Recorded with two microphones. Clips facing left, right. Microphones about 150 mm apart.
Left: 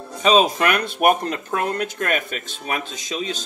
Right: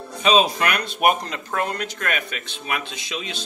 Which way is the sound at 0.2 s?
40° left (ahead or behind).